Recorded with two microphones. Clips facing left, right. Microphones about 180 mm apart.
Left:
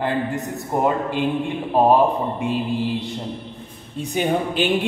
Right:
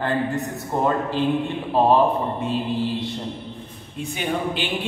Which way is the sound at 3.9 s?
45° left (ahead or behind).